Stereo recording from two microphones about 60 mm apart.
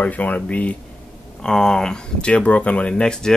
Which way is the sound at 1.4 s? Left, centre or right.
Centre.